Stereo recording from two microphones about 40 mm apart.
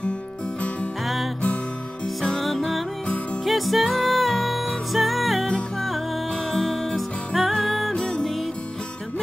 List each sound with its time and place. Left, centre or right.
2.4 s music: centre
6.5 s music: centre
7.9 s music: centre